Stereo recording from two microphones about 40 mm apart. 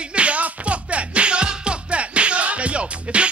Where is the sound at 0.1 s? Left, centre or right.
Right.